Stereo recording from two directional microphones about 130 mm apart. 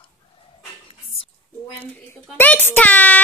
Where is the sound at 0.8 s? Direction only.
45° left (ahead or behind).